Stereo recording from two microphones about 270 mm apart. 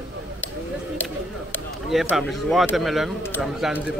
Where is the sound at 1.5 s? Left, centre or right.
Centre.